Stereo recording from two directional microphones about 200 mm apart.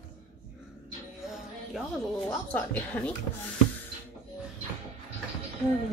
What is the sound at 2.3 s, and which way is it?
Speech, 10° left (ahead or behind).